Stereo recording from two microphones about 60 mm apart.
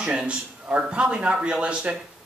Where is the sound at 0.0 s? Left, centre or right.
Centre.